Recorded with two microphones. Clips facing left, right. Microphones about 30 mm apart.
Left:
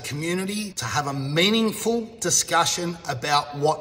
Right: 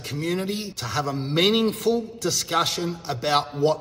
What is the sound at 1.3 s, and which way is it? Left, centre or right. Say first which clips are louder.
Speech: even; left.